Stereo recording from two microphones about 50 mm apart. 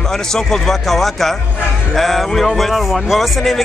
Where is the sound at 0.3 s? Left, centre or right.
Centre.